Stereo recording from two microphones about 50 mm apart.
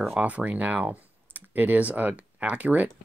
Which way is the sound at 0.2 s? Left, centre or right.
Right.